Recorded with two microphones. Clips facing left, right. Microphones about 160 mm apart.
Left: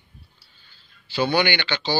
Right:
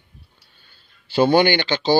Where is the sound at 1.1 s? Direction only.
45° right (ahead or behind).